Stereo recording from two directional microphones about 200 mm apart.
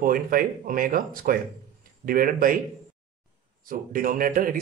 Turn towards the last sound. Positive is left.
turn(degrees=-45)  # may be behind; listen again after turning